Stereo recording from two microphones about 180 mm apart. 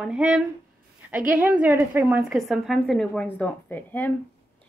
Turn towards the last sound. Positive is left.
turn(degrees=10)  # may be behind; listen again after turning